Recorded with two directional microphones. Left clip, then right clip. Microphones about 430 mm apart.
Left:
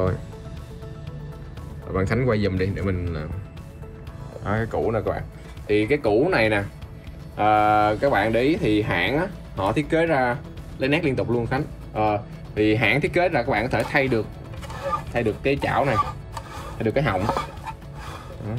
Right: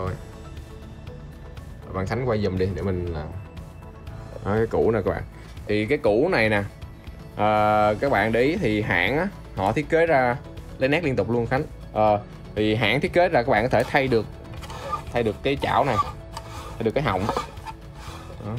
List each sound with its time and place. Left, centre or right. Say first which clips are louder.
2.0 s speech: left 2 dB; centre
4.5 s speech: right 3 dB; right
14.7 s a sound: left 4 dB; centre
15.1 s speech: right 1 dB; centre
16.0 s music: left 1 dB; centre
16.9 s speech: left 2 dB; centre
17.2 s a sound: left 2 dB; centre